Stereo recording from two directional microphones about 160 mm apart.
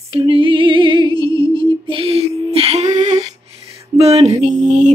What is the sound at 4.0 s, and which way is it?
Music, 40° right (ahead or behind).